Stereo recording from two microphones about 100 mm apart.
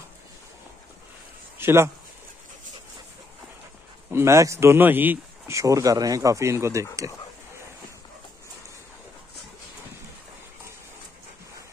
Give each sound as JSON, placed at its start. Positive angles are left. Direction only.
{"t": 1.6, "sound": "speech", "side_deg": -25}
{"t": 4.1, "sound": "speech", "side_deg": -25}
{"t": 5.5, "sound": "speech", "side_deg": -35}